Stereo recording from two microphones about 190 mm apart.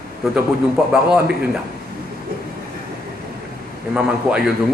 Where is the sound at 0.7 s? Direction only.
5° right (ahead or behind).